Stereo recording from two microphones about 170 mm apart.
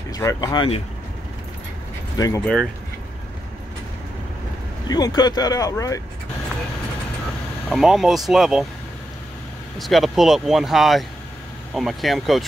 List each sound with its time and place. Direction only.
0.1 s speech: 20° left (ahead or behind)
2.1 s speech: 20° left (ahead or behind)
2.4 s speech: 5° left (ahead or behind)
4.8 s speech: 25° left (ahead or behind)
7.7 s speech: centre (ahead or behind)
9.8 s speech: centre (ahead or behind)